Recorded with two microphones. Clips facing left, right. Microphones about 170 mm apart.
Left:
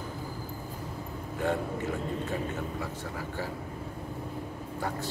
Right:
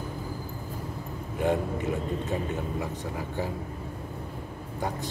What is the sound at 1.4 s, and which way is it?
Speech, 20° right (ahead or behind).